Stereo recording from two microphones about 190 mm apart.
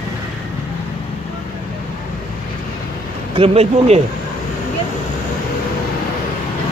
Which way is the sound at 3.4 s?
30° right (ahead or behind).